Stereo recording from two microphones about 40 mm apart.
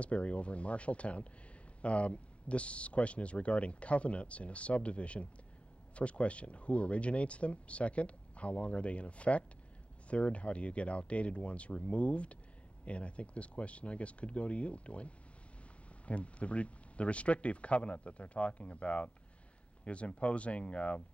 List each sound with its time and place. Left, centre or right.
0.0 s speech: left